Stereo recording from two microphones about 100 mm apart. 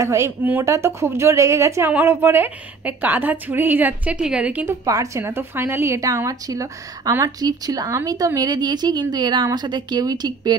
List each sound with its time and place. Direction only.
0.0 s a woman's voice: 30° right (ahead or behind)
0.4 s a woman's voice: 20° right (ahead or behind)
0.7 s a woman's voice: 30° right (ahead or behind); by 4.6 s 15° right (ahead or behind)
4.6 s a woman's voice: 35° right (ahead or behind)